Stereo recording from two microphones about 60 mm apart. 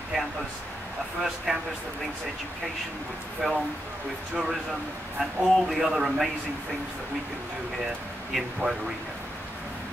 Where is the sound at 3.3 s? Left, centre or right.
Centre.